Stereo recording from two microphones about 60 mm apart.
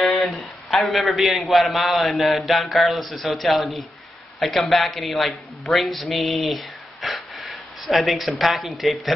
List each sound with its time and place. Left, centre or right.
0.0 s a man's voice: centre